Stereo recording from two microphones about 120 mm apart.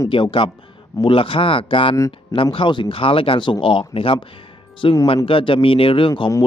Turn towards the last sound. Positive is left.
turn(degrees=50)  # may be behind; listen again after turning